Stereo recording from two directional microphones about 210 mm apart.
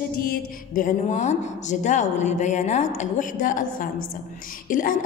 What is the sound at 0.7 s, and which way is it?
Speech, 35° left (ahead or behind).